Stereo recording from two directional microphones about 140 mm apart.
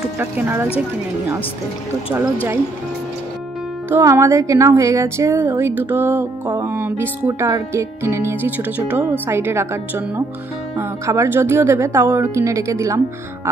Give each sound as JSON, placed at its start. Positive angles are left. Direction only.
{"t": 0.2, "sound": "speech", "side_deg": -15}
{"t": 3.9, "sound": "speech", "side_deg": -20}